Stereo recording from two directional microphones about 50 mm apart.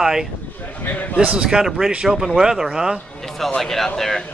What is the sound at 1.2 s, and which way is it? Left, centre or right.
Speech, right.